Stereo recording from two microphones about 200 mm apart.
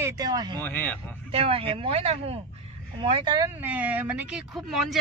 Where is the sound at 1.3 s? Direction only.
30° right (ahead or behind).